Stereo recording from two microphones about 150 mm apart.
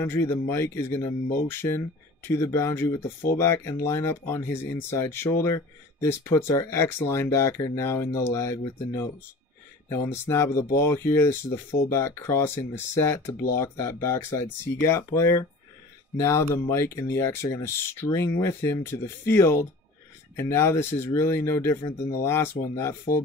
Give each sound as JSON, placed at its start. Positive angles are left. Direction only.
{"t": 0.0, "sound": "speech", "side_deg": 15}